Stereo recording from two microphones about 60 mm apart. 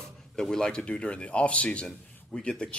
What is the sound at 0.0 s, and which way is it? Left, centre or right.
A man's voice, centre.